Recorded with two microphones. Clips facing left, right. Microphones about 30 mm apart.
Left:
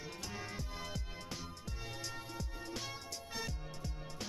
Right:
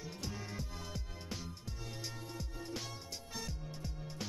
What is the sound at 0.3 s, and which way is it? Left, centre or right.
Music, left.